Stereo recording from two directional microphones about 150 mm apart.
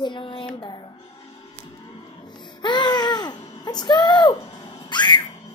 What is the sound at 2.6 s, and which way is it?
Baby cry, 30° left (ahead or behind).